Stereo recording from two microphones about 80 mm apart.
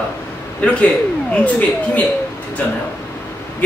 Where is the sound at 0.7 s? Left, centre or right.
Centre.